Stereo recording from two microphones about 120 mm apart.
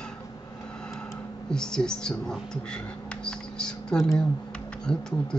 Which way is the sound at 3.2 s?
5° left (ahead or behind).